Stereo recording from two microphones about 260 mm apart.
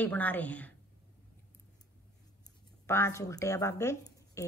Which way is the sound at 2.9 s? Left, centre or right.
Centre.